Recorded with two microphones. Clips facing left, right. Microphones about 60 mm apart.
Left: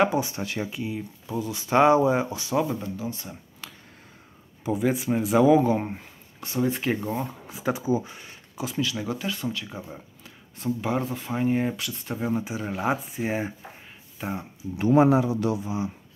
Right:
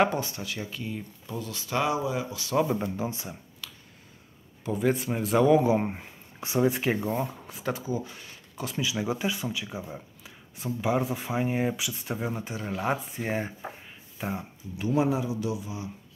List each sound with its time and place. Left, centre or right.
0.4 s speech: left
0.7 s speech: centre
1.8 s speech: left
2.8 s speech: right
3.6 s finger snapping: left
4.6 s speech: centre
5.7 s speech: centre
6.7 s speech: centre
7.7 s speech: centre
8.5 s speech: centre
8.8 s speech: centre
14.8 s speech: left
15.0 s a man's voice: left
15.6 s speech: left